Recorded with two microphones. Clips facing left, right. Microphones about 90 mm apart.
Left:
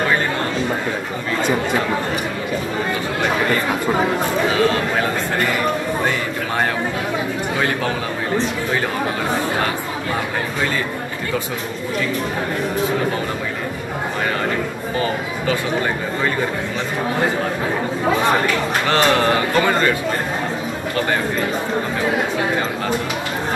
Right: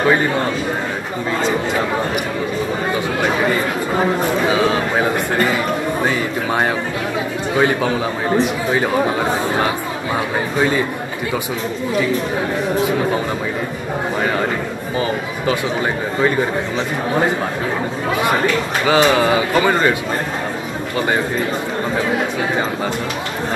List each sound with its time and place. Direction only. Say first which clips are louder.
7.5 s a man's voice: right 6 dB; 15° right (ahead or behind)
18.9 s a man's voice: right 3 dB; 10° right (ahead or behind)